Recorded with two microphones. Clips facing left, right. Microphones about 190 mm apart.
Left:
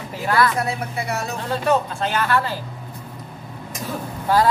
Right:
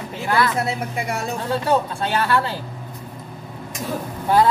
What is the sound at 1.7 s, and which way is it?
Speech, 30° right (ahead or behind).